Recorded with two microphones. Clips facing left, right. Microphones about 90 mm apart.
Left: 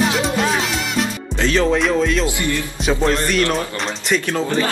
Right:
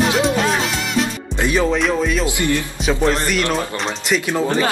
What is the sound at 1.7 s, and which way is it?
Speech, centre (ahead or behind).